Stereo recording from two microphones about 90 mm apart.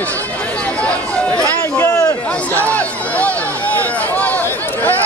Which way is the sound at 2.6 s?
15° left (ahead or behind).